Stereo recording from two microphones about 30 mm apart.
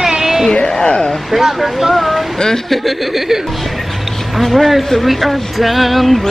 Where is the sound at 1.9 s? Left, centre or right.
Centre.